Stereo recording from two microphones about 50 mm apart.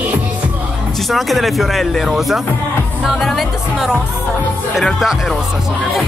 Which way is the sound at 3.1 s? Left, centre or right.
Centre.